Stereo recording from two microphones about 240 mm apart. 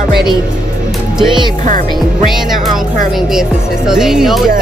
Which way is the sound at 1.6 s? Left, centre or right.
Right.